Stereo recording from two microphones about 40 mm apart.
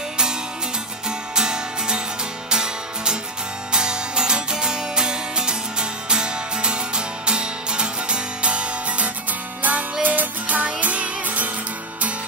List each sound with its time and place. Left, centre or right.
1.3 s music: centre; by 11.5 s right